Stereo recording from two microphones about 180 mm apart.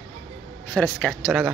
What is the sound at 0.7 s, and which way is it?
Speech, 5° left (ahead or behind).